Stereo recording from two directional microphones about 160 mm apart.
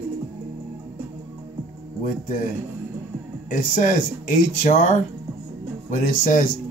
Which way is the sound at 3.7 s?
50° left (ahead or behind).